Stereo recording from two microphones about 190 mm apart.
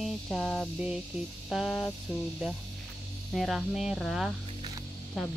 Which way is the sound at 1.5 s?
Centre (ahead or behind).